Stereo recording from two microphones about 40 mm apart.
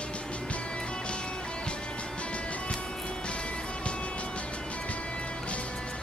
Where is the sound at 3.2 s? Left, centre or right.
Left.